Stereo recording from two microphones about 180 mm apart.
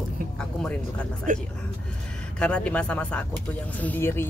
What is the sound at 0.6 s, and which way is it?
Speech, 5° left (ahead or behind).